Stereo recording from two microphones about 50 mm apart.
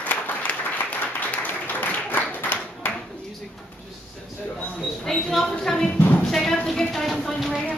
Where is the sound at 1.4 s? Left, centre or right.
Left.